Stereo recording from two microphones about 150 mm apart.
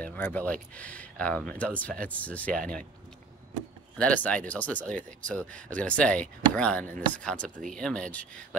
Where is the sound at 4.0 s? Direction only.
10° left (ahead or behind).